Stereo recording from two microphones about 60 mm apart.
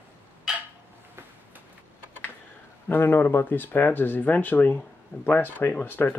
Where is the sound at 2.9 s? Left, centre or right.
Left.